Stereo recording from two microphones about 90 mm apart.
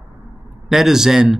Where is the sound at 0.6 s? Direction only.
5° right (ahead or behind).